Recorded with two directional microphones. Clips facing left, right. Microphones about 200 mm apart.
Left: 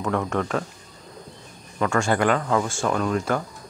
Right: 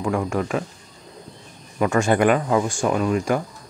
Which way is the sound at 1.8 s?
20° right (ahead or behind).